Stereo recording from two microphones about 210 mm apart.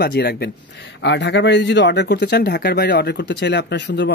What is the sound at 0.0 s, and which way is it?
Speech, 50° left (ahead or behind).